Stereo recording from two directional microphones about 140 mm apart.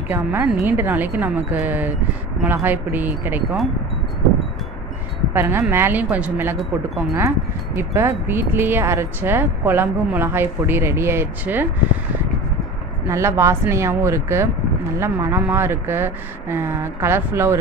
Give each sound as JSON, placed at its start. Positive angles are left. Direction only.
{"t": 0.1, "sound": "speech", "side_deg": -15}
{"t": 5.3, "sound": "speech", "side_deg": -15}
{"t": 13.1, "sound": "speech", "side_deg": -20}